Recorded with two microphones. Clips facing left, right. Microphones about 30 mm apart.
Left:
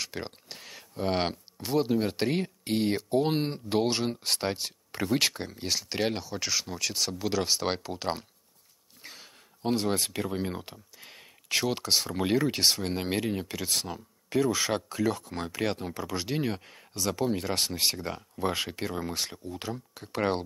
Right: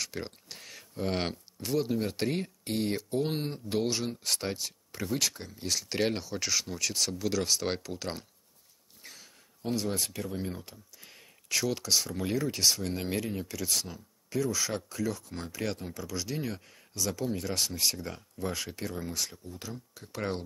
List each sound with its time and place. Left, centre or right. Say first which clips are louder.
0.0 s speech: left 1 dB; centre; by 5.7 s left
5.7 s speech: even; centre
9.0 s a sound: left 3 dB; left
9.7 s speech: left 4 dB; left